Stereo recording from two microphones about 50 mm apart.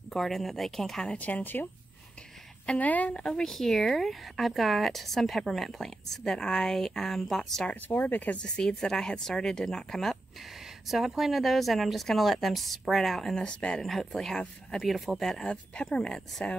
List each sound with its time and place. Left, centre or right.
0.1 s a woman's voice: centre
1.1 s speech: left
2.6 s a woman's voice: left
3.2 s speech: centre
7.9 s speech: left
8.4 s speech: centre
10.9 s a woman's voice: centre
13.7 s a woman's voice: centre
15.4 s speech: left